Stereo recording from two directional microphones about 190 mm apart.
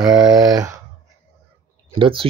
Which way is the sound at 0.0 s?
5° right (ahead or behind).